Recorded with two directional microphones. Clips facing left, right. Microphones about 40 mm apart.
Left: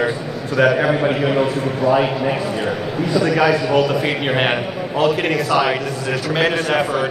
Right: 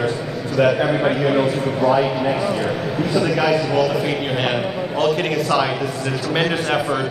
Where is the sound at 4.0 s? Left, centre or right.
Left.